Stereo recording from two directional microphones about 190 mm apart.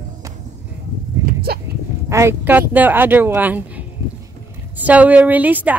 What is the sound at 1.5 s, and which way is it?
Speech, 55° right (ahead or behind).